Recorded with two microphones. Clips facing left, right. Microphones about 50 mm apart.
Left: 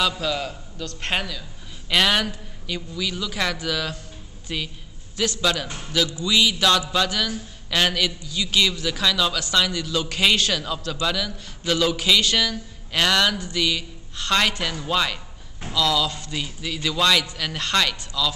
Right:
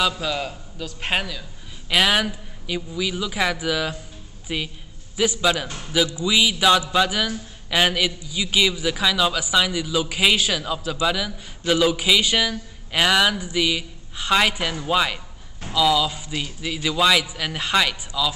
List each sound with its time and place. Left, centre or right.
0.0 s a man's voice: centre